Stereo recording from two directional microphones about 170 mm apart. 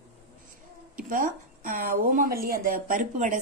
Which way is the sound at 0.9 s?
55° right (ahead or behind).